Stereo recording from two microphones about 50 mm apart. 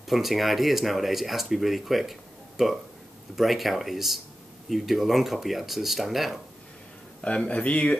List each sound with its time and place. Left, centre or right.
0.0 s speech: centre
7.2 s speech: left